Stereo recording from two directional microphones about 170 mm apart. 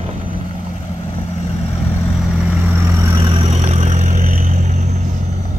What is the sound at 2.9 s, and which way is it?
Vehicle, 25° right (ahead or behind).